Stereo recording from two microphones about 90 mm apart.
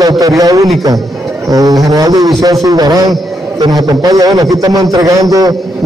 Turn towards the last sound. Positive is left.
turn(degrees=-45)  # may be behind; listen again after turning